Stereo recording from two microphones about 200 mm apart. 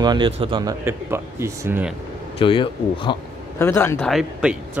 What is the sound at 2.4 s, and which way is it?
Speech, 25° left (ahead or behind).